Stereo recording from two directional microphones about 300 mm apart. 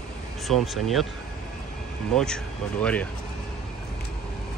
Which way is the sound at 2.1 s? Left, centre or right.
Centre.